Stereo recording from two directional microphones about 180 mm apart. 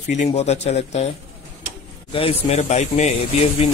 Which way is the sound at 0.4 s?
35° left (ahead or behind).